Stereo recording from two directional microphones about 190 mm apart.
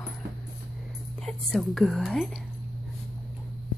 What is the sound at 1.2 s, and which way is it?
Speech, centre (ahead or behind).